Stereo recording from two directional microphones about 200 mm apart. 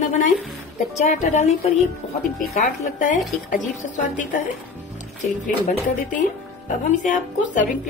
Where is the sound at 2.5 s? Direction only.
40° left (ahead or behind).